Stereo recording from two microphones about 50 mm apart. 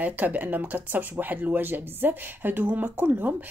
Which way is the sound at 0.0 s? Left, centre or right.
Right.